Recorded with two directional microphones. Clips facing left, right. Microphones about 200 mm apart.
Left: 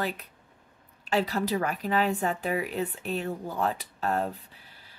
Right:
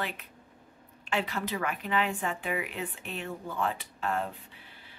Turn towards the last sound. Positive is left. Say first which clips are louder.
# left 3 dB
turn(degrees=40)  # may be behind; listen again after turning